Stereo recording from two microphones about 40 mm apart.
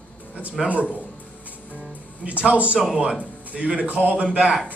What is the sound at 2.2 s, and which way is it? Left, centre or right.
A man's voice, right.